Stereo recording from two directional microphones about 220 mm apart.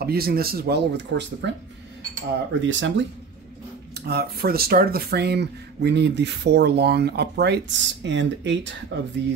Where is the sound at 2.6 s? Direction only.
60° right (ahead or behind).